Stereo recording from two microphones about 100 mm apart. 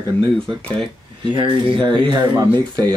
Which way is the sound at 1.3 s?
55° right (ahead or behind).